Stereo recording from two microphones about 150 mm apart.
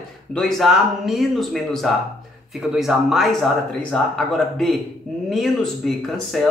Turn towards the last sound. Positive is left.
turn(degrees=0)  # may be behind; listen again after turning